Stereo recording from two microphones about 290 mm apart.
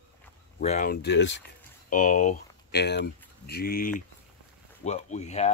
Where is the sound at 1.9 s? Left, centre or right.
Left.